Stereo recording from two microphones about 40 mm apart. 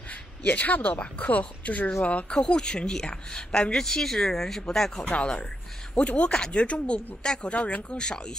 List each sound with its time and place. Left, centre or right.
0.1 s speech: left
2.2 s speech: left
5.0 s speech: left
8.0 s speech: centre